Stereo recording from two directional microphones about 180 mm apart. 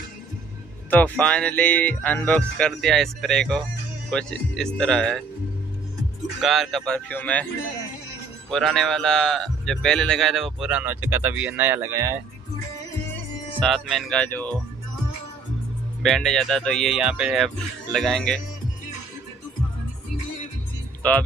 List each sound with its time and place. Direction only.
0.8 s a man's voice: 10° left (ahead or behind)
6.4 s a man's voice: centre (ahead or behind)
8.5 s a man's voice: 5° left (ahead or behind); by 12.2 s 15° right (ahead or behind)
13.6 s a man's voice: centre (ahead or behind)
16.0 s a man's voice: 5° left (ahead or behind)